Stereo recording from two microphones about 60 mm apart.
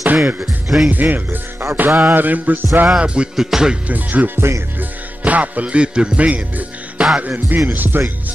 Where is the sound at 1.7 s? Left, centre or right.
Right.